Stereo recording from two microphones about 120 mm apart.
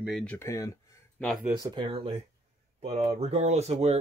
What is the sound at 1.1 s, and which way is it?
Speech, 5° left (ahead or behind).